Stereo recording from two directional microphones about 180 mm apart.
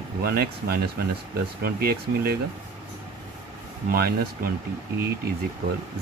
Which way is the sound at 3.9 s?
60° right (ahead or behind).